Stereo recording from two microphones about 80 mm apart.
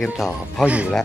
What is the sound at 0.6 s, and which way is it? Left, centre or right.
Speech, centre.